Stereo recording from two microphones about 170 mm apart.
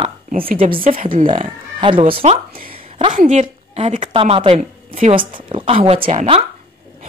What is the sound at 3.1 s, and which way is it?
A woman's voice, 50° right (ahead or behind).